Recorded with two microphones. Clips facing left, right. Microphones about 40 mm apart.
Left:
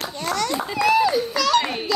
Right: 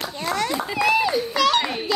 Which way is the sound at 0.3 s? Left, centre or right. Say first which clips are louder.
Even; right.